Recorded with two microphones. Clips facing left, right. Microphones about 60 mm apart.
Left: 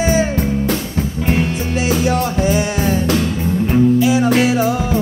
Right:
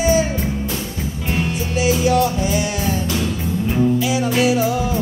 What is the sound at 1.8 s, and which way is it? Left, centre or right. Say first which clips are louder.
Music: right 1 dB; left.